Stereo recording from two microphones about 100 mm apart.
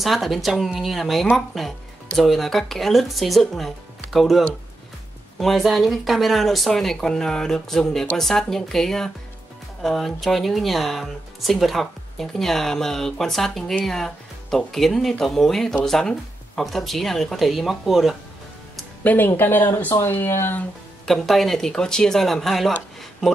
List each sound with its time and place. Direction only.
0.0 s speech: centre (ahead or behind)
19.0 s speech: 20° left (ahead or behind)
21.0 s speech: centre (ahead or behind)